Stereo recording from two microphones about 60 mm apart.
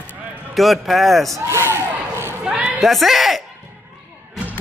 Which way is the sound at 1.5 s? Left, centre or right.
Right.